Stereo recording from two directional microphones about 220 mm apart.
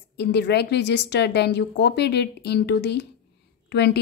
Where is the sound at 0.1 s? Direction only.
50° left (ahead or behind).